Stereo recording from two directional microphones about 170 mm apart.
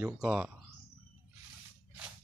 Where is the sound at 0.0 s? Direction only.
5° right (ahead or behind).